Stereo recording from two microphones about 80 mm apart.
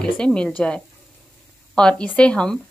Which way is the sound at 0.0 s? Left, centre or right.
Centre.